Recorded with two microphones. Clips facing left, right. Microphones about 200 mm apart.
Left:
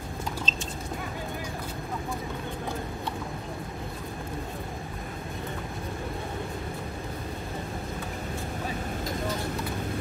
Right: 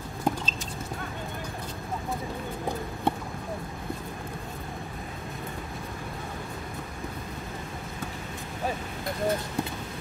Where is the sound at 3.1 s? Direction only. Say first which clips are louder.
Right 11 dB; 55° right (ahead or behind).